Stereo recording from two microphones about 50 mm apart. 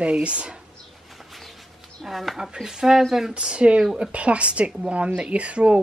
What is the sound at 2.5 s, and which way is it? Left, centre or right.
Speech, centre.